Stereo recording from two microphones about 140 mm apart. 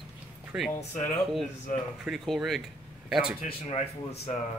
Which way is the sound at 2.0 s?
Centre (ahead or behind).